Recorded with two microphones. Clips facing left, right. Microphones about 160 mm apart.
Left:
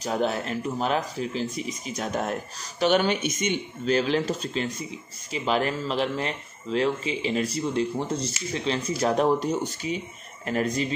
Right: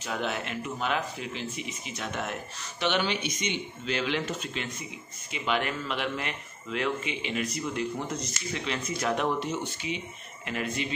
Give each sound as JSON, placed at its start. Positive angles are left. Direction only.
{"t": 0.0, "sound": "speech", "side_deg": 35}